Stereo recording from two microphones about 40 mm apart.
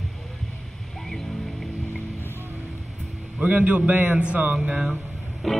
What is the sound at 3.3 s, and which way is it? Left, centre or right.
A man's voice, right.